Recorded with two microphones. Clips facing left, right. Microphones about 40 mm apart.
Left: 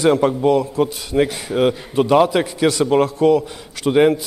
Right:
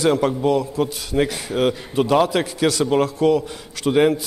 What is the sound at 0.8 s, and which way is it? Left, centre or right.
A man's voice, left.